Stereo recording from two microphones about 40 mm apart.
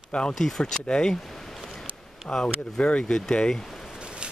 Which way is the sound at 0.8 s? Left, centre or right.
Left.